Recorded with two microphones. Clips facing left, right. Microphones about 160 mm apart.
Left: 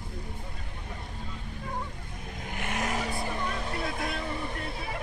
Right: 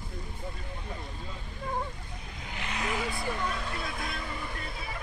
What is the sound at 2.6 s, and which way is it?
Vehicle, 50° left (ahead or behind).